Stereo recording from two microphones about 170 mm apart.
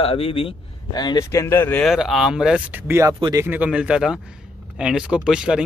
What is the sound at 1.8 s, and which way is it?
Speech, centre (ahead or behind).